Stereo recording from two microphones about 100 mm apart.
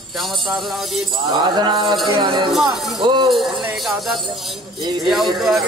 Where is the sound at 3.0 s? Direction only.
50° right (ahead or behind).